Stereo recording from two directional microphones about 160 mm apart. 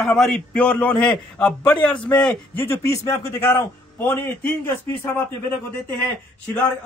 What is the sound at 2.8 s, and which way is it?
A man's voice, 20° left (ahead or behind).